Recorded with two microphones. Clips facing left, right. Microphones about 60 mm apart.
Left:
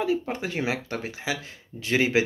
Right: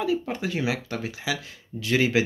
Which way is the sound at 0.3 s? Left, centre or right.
Left.